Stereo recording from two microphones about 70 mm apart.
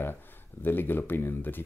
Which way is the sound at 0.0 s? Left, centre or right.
Left.